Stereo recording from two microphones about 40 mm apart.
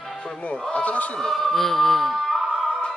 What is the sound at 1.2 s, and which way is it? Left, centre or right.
Speech, centre.